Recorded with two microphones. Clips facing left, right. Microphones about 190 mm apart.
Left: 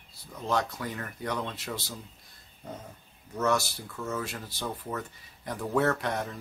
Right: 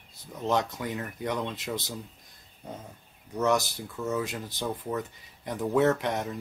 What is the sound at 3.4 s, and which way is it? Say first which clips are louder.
Speech: right 2 dB; 15° right (ahead or behind).